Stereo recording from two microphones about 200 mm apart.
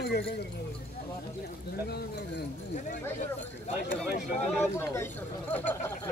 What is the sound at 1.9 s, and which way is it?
Speech, 55° left (ahead or behind).